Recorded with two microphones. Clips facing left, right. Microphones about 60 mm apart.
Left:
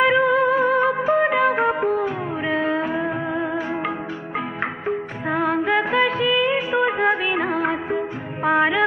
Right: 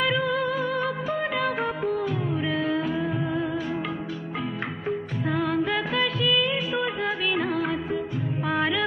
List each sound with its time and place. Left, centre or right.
0.0 s music: left
4.8 s music: left